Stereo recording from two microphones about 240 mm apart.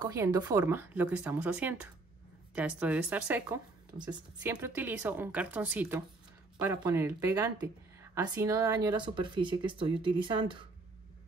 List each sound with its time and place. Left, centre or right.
0.0 s speech: centre